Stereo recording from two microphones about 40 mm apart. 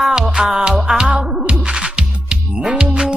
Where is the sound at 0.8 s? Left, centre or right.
Centre.